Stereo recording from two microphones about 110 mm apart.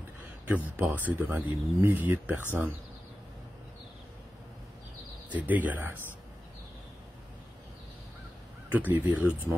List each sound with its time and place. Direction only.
0.5 s speech: 15° right (ahead or behind)
5.3 s speech: 15° right (ahead or behind)
8.7 s speech: 15° right (ahead or behind)